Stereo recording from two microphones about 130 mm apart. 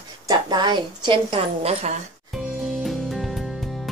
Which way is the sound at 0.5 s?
35° right (ahead or behind).